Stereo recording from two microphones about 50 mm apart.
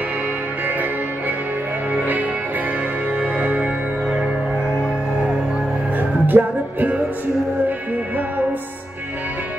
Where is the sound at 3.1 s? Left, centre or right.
Right.